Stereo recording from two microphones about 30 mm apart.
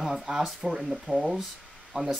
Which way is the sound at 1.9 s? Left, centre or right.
Right.